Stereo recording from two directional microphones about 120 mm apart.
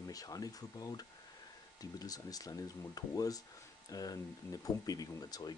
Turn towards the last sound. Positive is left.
turn(degrees=30)  # may be behind; listen again after turning